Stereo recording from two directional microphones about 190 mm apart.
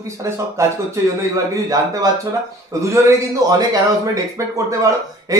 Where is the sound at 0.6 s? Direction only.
15° right (ahead or behind).